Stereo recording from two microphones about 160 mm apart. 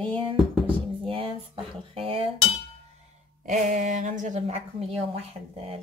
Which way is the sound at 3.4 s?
50° right (ahead or behind).